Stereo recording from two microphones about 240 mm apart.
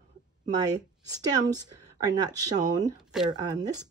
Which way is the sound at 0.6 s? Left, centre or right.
Centre.